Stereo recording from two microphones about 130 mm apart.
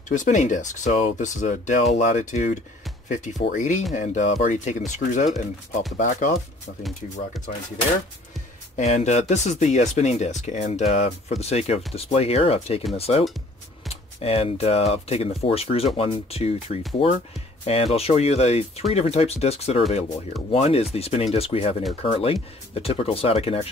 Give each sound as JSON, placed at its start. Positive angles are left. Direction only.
{"t": 0.1, "sound": "speech", "side_deg": 75}
{"t": 6.8, "sound": "speech", "side_deg": 0}
{"t": 8.7, "sound": "speech", "side_deg": 60}